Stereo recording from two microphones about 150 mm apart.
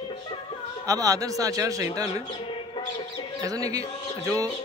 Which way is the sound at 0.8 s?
25° right (ahead or behind).